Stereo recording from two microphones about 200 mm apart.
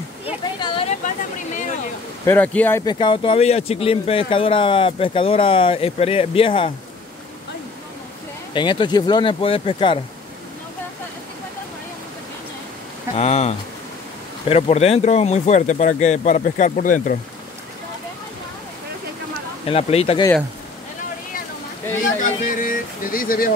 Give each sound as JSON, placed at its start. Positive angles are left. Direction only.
{"t": 0.6, "sound": "a sound", "side_deg": 25}
{"t": 2.2, "sound": "speech", "side_deg": 10}
{"t": 2.8, "sound": "speech", "side_deg": 20}
{"t": 8.5, "sound": "speech", "side_deg": 25}
{"t": 13.1, "sound": "speech", "side_deg": 35}
{"t": 19.6, "sound": "speech", "side_deg": 30}
{"t": 22.2, "sound": "speech", "side_deg": 45}